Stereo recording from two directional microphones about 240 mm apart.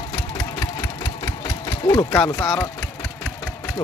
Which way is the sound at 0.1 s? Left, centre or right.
Centre.